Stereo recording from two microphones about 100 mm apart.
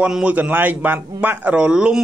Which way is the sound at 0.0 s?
10° right (ahead or behind).